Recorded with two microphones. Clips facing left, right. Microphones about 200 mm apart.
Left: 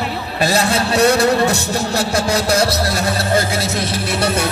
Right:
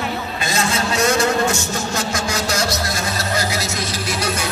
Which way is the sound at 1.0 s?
35° left (ahead or behind).